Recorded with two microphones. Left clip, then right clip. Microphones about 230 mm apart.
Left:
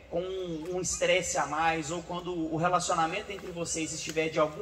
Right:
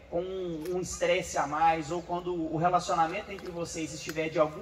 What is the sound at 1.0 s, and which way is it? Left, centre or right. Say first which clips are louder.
A man's voice: left 1 dB; left.